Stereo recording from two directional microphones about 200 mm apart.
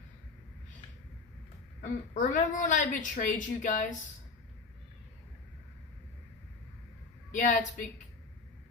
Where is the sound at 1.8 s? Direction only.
40° left (ahead or behind).